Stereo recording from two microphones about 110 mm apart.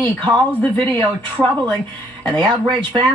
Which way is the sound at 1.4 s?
5° right (ahead or behind).